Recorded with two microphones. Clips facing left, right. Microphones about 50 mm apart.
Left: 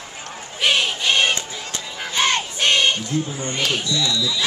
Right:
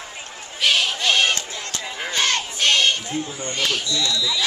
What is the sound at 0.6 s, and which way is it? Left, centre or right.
Bird, centre.